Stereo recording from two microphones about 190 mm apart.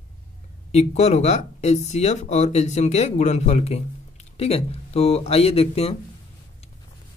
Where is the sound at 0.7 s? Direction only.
35° left (ahead or behind).